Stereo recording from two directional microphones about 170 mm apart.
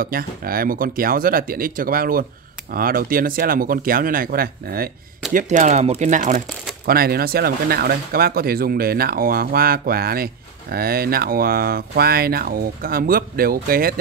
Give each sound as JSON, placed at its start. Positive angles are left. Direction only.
{"t": 0.0, "sound": "speech", "side_deg": -60}
{"t": 5.3, "sound": "speech", "side_deg": -45}
{"t": 6.9, "sound": "speech", "side_deg": -65}